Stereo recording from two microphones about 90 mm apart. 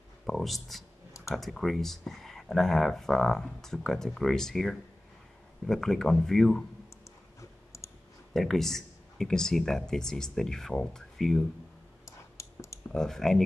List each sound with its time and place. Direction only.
0.3 s speech: centre (ahead or behind)
7.3 s clicking: 35° left (ahead or behind)
8.3 s speech: 5° left (ahead or behind)
12.4 s clicking: 35° left (ahead or behind)
12.9 s speech: 5° left (ahead or behind)